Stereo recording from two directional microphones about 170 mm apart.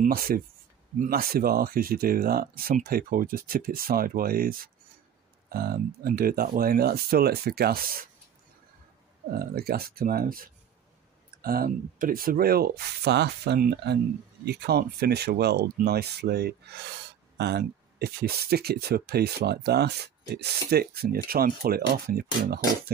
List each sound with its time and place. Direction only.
0.0 s speech: 55° right (ahead or behind)
9.3 s speech: 65° right (ahead or behind)